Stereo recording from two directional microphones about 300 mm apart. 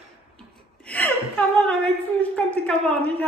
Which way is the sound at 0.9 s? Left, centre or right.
Centre.